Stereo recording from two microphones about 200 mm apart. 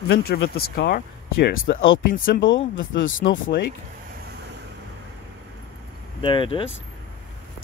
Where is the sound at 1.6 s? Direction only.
75° left (ahead or behind).